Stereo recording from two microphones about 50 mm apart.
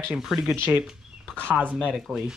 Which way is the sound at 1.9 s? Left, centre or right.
Centre.